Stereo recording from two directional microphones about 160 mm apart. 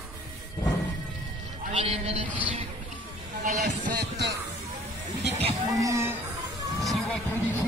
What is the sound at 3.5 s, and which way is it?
Music, 55° right (ahead or behind).